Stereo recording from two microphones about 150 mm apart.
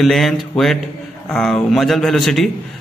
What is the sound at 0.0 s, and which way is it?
A man's voice, centre (ahead or behind).